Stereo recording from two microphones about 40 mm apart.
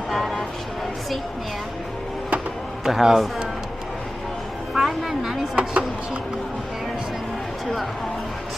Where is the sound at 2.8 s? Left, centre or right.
Centre.